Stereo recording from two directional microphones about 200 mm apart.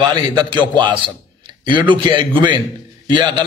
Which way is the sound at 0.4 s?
20° right (ahead or behind).